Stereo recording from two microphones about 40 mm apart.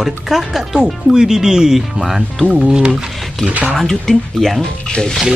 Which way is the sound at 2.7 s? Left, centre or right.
Right.